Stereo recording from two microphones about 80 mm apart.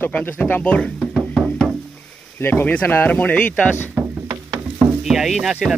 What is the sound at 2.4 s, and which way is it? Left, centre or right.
Speech, left.